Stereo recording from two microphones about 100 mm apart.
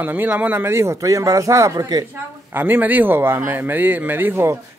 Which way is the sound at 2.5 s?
20° right (ahead or behind).